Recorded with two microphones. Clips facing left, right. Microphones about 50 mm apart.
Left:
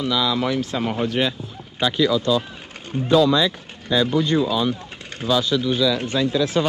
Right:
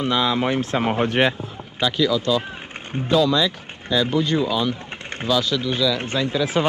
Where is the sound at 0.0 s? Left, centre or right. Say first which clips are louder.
Right 1 dB; right.